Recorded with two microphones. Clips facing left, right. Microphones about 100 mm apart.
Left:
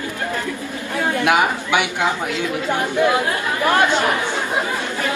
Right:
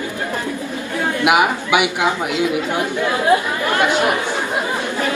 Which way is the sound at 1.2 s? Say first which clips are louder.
Right 3 dB; 15° right (ahead or behind).